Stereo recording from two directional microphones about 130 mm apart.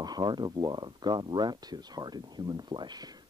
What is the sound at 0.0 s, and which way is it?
Speech, 35° right (ahead or behind).